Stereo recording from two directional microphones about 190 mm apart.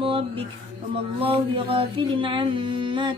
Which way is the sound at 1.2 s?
30° right (ahead or behind).